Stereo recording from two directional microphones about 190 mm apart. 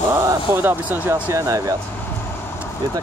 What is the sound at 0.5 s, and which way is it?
Speech, 10° right (ahead or behind).